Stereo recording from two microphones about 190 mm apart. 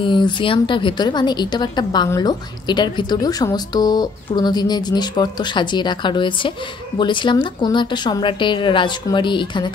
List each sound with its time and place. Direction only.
0.0 s a woman's voice: 25° left (ahead or behind)